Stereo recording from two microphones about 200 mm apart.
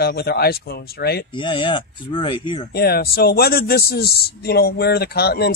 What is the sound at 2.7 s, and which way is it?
Speech, 55° left (ahead or behind).